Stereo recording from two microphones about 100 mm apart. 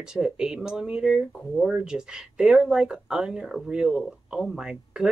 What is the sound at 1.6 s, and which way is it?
Speech, 5° right (ahead or behind).